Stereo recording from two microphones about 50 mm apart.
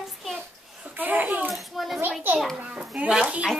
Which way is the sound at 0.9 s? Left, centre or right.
Right.